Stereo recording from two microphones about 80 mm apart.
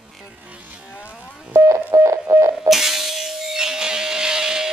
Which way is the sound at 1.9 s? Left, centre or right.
Right.